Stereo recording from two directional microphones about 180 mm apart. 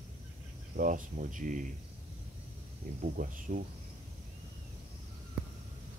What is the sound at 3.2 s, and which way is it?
Speech, 45° right (ahead or behind).